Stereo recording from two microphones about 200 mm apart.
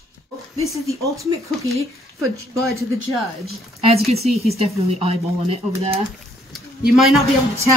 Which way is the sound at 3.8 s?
30° right (ahead or behind).